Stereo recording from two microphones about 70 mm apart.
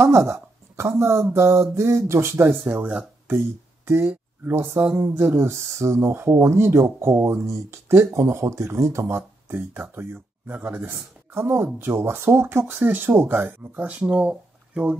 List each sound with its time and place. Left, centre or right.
0.0 s speech: right
3.3 s speech: right
9.8 s speech: right
11.3 s speech: right
13.7 s speech: right